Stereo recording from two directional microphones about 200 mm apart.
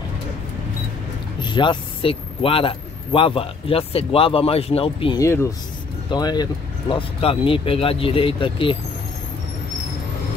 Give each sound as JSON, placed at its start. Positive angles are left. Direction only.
{"t": 1.4, "sound": "a man's voice", "side_deg": 25}
{"t": 5.2, "sound": "a man's voice", "side_deg": 15}